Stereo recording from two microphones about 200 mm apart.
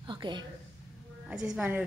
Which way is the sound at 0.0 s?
25° right (ahead or behind).